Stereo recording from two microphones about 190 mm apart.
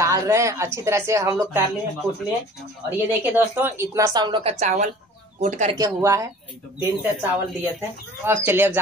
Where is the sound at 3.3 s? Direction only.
10° right (ahead or behind); by 4.5 s 25° right (ahead or behind).